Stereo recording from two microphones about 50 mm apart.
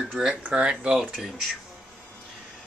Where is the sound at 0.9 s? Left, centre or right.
Centre.